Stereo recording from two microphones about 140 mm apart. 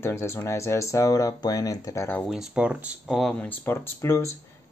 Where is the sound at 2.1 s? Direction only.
Centre (ahead or behind).